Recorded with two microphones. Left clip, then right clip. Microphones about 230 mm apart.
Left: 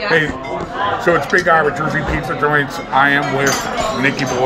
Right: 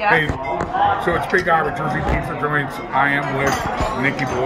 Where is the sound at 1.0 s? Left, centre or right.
Left.